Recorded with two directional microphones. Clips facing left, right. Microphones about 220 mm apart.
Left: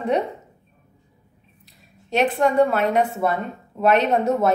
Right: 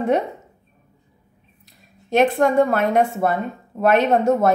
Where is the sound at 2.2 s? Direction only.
45° right (ahead or behind).